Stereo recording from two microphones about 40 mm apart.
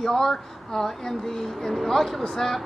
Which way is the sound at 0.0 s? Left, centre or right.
Centre.